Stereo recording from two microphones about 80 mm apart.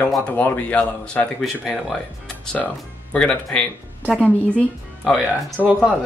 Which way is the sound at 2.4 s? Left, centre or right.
Centre.